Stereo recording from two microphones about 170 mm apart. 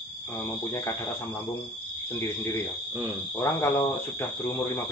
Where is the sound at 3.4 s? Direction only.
20° left (ahead or behind).